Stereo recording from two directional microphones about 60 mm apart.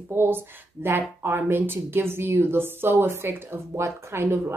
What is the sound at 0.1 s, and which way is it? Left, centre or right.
A woman's voice, right.